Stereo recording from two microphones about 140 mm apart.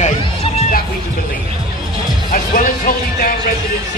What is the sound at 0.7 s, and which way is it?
Music, 90° left.